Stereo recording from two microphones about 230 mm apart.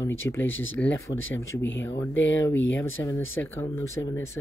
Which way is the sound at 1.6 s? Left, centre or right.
Left.